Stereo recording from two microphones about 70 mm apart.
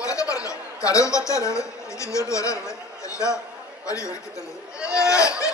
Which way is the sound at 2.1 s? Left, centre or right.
Left.